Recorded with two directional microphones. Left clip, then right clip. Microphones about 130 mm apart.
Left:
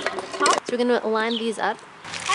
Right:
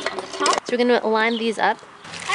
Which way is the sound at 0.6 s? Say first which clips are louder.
Right 3 dB; 15° right (ahead or behind).